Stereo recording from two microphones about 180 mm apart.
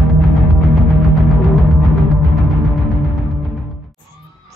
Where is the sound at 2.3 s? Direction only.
Centre (ahead or behind).